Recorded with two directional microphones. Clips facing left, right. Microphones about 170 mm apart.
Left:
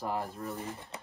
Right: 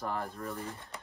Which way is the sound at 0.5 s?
25° left (ahead or behind).